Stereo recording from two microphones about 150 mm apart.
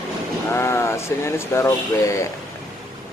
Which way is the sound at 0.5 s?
15° left (ahead or behind).